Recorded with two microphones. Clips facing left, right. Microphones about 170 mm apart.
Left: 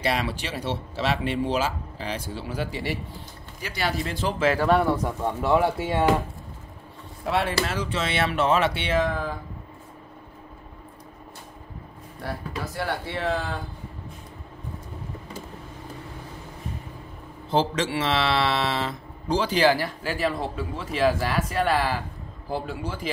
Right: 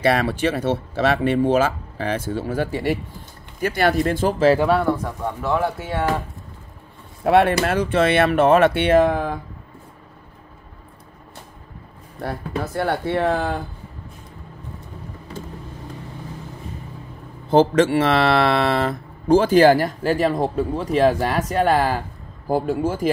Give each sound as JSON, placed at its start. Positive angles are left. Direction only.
{"t": 0.0, "sound": "speech", "side_deg": -55}
{"t": 5.0, "sound": "speech", "side_deg": 15}
{"t": 7.2, "sound": "speech", "side_deg": -55}
{"t": 12.2, "sound": "speech", "side_deg": -55}
{"t": 17.5, "sound": "speech", "side_deg": -50}